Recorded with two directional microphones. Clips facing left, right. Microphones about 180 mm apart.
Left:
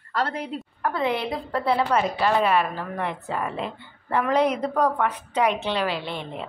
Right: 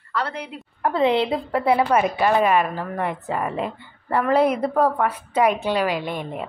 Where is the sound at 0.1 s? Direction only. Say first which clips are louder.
Left 1 dB; 45° left (ahead or behind).